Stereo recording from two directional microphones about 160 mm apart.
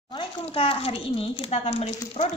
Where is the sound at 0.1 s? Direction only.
35° left (ahead or behind).